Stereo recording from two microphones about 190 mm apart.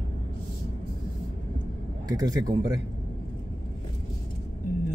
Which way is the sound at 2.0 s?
20° right (ahead or behind).